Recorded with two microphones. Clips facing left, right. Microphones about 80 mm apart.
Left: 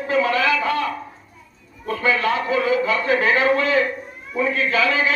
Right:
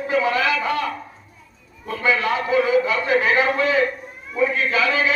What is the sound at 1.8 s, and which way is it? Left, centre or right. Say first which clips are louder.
A man's voice: left 1 dB; centre.